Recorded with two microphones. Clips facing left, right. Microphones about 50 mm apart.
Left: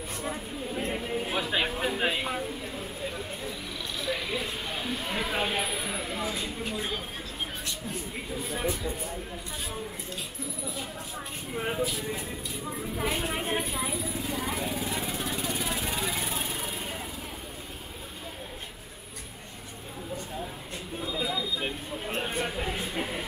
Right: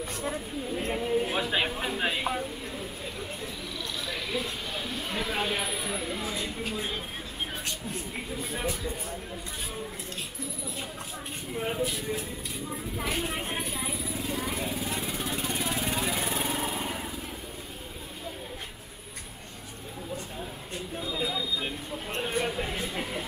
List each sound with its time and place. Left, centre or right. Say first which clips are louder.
0.2 s speech: even; centre
4.0 s speech: left 2 dB; centre
11.5 s speech: even; centre
13.5 s speech: left 3 dB; left
14.4 s speech: left 1 dB; centre
14.9 s vehicle: even; centre
16.1 s lawn mower: right 2 dB; centre
16.4 s lawn mower: right 4 dB; right
21.0 s a sound: left 1 dB; centre
22.4 s a sound: even; centre